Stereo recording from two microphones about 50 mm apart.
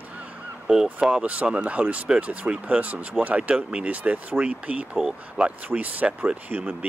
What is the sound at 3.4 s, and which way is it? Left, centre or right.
Speech, centre.